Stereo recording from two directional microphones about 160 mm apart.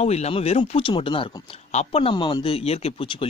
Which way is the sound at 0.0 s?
40° left (ahead or behind).